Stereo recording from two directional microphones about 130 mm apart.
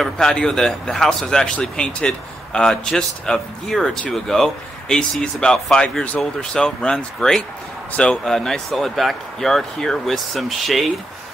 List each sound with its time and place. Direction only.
0.0 s speech: 5° left (ahead or behind)